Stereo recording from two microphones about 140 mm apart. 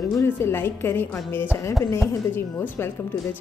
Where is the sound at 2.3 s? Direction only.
15° left (ahead or behind).